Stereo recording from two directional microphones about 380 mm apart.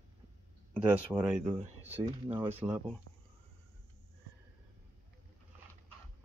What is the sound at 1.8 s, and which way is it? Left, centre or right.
Speech, centre.